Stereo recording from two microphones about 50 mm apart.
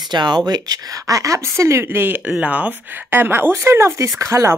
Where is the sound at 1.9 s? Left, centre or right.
Right.